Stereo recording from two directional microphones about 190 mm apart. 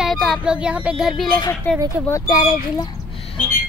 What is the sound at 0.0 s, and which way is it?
Speech, centre (ahead or behind).